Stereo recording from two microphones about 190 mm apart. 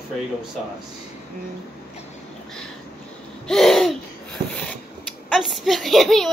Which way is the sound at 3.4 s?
Centre (ahead or behind).